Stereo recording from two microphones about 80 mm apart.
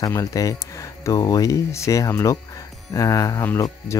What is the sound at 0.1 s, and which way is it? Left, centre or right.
Speech, left.